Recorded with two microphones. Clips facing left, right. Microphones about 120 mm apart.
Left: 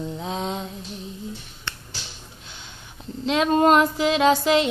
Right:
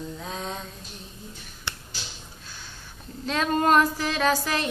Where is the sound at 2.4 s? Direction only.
20° left (ahead or behind).